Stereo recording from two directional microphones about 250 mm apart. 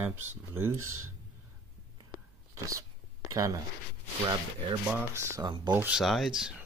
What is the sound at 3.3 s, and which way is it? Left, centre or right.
Speech, centre.